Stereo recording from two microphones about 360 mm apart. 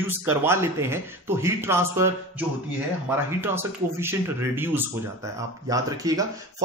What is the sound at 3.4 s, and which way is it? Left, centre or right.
Speech, centre.